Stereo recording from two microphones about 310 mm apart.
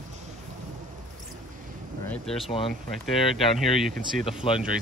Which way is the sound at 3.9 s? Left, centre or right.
Right.